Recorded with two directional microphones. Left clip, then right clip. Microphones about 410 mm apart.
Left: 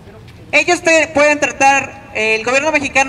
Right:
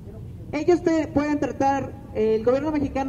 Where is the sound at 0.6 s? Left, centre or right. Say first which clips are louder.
Left 10 dB; centre.